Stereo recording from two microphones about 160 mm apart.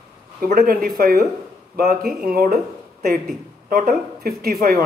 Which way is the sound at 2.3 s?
70° right (ahead or behind).